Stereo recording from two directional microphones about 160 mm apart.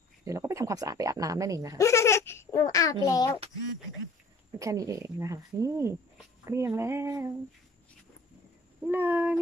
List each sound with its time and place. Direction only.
0.2 s speech: 20° right (ahead or behind)
1.8 s speech: 15° left (ahead or behind)
4.6 s speech: 20° right (ahead or behind)
6.4 s female singing: 15° right (ahead or behind)
8.8 s female singing: 10° right (ahead or behind)